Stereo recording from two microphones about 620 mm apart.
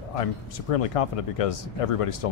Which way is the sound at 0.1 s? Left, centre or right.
Left.